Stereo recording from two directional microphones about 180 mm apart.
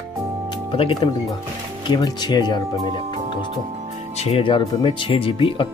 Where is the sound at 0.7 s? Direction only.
30° left (ahead or behind).